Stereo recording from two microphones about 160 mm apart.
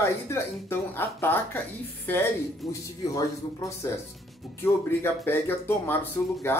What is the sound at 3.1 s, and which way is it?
Speech, 20° left (ahead or behind).